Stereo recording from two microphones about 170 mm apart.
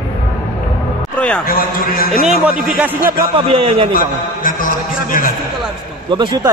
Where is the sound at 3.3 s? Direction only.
30° right (ahead or behind).